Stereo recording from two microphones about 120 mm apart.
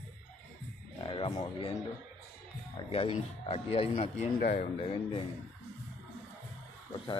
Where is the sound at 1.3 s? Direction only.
75° left (ahead or behind).